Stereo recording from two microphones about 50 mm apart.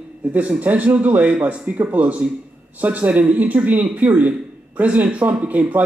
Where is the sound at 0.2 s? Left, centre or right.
Right.